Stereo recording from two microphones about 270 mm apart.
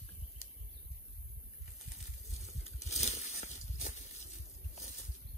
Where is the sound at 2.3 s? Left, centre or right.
Left.